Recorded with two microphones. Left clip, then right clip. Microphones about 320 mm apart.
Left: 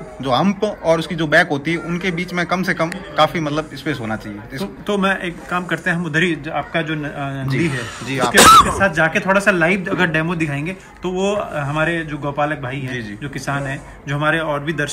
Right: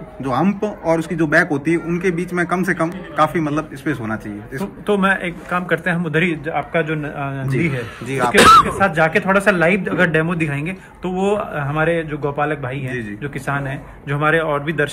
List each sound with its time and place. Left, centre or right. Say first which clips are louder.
0.3 s speech: left 2 dB; centre
4.8 s speech: right 2 dB; centre
8.1 s speech: left 1 dB; centre
8.6 s speech: even; centre